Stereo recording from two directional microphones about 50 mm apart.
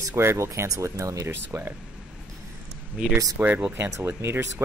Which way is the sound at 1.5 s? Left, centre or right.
Right.